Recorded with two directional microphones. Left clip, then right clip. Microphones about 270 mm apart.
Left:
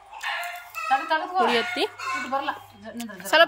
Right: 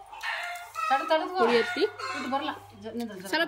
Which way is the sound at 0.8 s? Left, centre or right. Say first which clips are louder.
Left 2 dB; centre.